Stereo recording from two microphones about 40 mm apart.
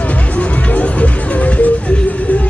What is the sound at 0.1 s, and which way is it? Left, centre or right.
Music, left.